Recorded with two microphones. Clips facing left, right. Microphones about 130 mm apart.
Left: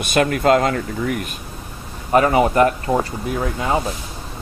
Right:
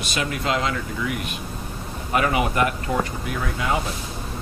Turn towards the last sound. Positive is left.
turn(degrees=30)  # may be behind; listen again after turning